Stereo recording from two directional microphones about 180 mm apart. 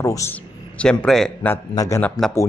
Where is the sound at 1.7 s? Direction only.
20° left (ahead or behind).